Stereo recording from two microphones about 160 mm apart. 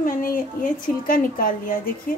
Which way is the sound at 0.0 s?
60° left (ahead or behind).